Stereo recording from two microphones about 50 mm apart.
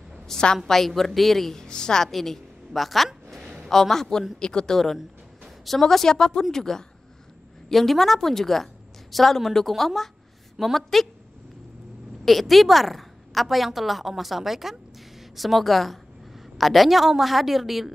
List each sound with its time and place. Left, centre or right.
0.3 s a woman's voice: centre
0.7 s a woman's voice: centre
3.3 s a sound: centre
3.6 s a woman's voice: centre
12.3 s a woman's voice: centre